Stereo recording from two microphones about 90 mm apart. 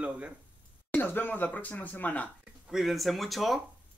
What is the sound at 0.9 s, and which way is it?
Speech, 20° left (ahead or behind).